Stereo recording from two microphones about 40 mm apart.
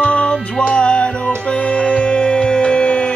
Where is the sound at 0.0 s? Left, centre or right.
Left.